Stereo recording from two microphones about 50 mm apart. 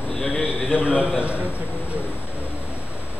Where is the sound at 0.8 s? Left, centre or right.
Right.